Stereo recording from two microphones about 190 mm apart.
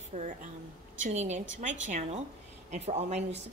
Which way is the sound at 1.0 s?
35° right (ahead or behind).